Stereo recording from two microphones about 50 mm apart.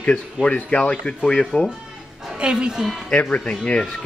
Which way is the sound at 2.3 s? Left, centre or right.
Centre.